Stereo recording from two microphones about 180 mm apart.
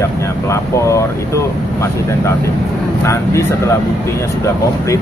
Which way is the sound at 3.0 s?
15° left (ahead or behind).